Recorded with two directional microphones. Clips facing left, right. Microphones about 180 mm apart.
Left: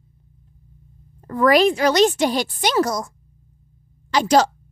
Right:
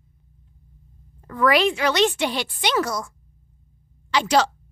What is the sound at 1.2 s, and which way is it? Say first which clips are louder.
Speech: left 4 dB; 40° left (ahead or behind).